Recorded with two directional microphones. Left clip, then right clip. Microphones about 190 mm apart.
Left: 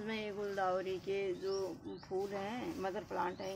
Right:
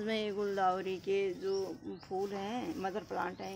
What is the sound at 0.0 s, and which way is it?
Speech, 60° right (ahead or behind).